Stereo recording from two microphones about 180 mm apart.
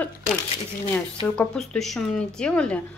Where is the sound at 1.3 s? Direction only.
5° left (ahead or behind).